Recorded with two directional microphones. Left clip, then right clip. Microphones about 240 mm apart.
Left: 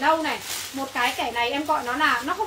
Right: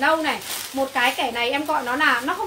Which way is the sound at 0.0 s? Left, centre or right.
Right.